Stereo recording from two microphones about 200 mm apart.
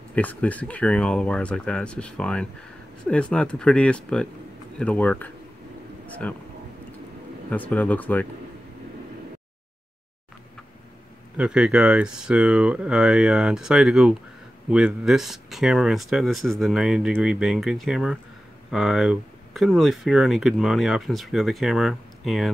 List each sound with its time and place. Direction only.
0.1 s speech: 10° left (ahead or behind)
7.5 s speech: 5° left (ahead or behind)
11.3 s speech: 5° right (ahead or behind)